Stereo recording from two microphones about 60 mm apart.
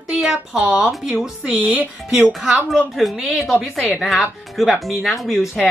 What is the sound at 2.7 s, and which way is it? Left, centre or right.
Speech, centre.